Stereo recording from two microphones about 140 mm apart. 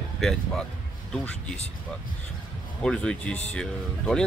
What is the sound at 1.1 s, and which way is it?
Speech, 5° left (ahead or behind).